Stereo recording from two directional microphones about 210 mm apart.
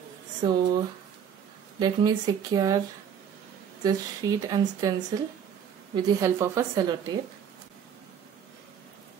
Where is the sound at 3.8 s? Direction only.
15° right (ahead or behind).